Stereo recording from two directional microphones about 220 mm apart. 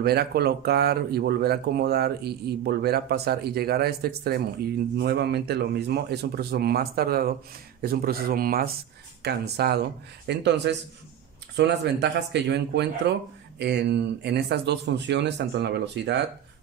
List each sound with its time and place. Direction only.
0.0 s speech: 45° right (ahead or behind)